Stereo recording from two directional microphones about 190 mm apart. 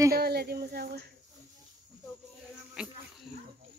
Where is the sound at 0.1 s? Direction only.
55° right (ahead or behind).